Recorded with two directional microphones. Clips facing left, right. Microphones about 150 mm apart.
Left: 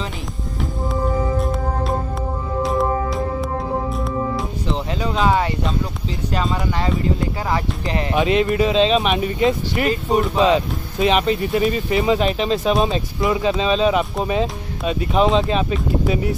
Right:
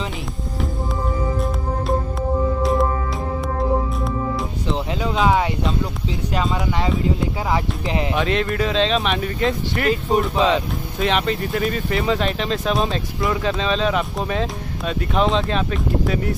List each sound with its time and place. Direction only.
4.6 s a sound: centre (ahead or behind)
6.3 s speech: 5° right (ahead or behind)
8.2 s speech: 10° left (ahead or behind)
10.0 s speech: centre (ahead or behind)
11.5 s speech: 20° left (ahead or behind)